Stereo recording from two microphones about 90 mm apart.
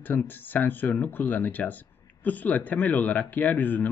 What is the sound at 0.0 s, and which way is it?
Speech, 20° left (ahead or behind).